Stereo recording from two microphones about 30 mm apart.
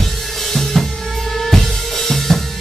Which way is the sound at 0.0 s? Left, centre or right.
Centre.